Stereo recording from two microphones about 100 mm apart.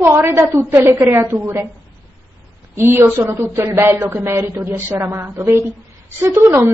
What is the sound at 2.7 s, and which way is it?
A woman's voice, 25° right (ahead or behind).